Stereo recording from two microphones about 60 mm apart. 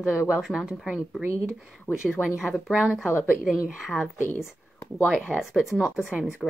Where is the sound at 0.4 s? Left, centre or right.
Centre.